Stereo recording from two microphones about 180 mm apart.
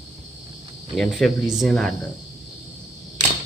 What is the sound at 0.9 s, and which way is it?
Speech, centre (ahead or behind).